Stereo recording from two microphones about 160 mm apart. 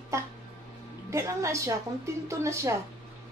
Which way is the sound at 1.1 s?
20° right (ahead or behind).